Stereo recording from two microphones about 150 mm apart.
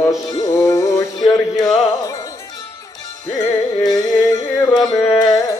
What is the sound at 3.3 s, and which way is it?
Music, 20° left (ahead or behind).